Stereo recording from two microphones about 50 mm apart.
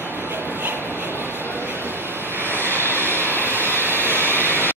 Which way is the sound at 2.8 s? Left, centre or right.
Right.